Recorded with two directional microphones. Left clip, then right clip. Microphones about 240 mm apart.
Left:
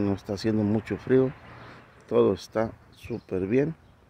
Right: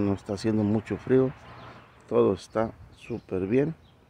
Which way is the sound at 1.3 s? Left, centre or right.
Left.